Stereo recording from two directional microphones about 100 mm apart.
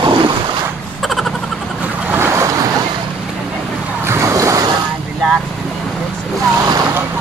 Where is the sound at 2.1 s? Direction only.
25° right (ahead or behind).